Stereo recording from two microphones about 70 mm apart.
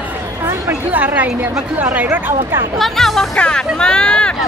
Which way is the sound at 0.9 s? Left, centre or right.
Right.